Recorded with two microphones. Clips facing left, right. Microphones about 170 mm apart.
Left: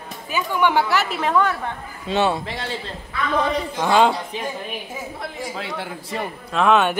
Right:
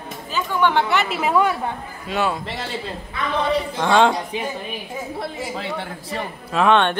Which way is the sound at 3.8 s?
5° left (ahead or behind).